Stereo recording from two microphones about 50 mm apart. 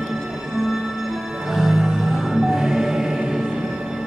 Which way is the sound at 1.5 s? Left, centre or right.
Centre.